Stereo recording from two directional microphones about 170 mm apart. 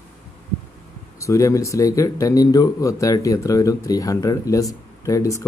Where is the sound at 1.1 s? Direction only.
20° left (ahead or behind).